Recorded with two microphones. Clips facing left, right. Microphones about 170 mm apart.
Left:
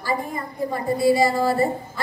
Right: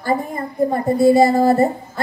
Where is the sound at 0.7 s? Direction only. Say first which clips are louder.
Right 5 dB; 50° right (ahead or behind).